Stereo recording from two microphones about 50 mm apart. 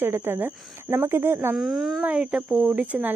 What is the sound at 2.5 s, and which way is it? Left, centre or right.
Speech, right.